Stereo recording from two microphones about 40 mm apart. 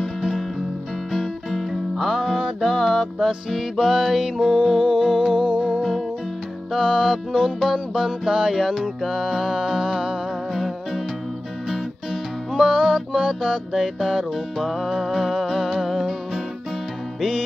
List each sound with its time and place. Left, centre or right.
0.0 s music: centre; by 5.8 s right
5.8 s music: centre
6.7 s music: centre
10.5 s music: centre
13.9 s music: centre